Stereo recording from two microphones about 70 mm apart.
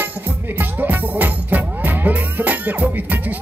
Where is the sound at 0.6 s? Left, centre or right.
Right.